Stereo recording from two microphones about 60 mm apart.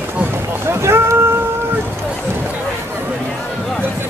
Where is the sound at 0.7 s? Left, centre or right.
Right.